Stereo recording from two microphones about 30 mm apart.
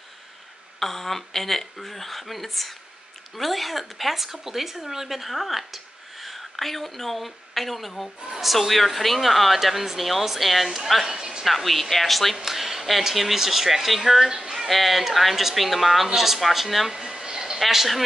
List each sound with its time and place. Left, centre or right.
0.7 s speech: centre
11.1 s speech: centre
11.4 s speech: centre
12.4 s speech: centre
17.1 s a sound: right
17.6 s speech: centre